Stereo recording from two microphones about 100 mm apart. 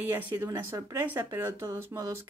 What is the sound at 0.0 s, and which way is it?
Speech, 20° right (ahead or behind).